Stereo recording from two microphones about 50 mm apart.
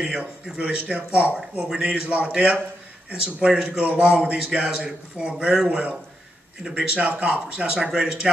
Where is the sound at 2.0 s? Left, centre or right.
Right.